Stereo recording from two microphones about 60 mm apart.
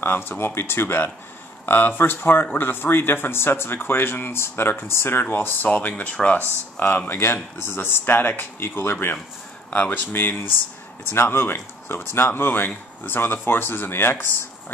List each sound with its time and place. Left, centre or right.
0.0 s speech: left